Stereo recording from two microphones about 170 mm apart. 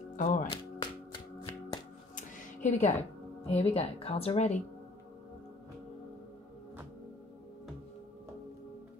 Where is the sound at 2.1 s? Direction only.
45° left (ahead or behind).